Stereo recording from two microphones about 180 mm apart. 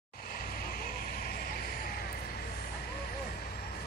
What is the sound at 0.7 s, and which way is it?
Vehicle, 55° left (ahead or behind).